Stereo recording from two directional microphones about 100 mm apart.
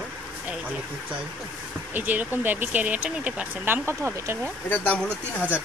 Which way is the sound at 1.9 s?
15° right (ahead or behind).